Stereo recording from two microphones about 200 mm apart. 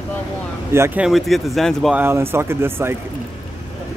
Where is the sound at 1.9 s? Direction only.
10° right (ahead or behind).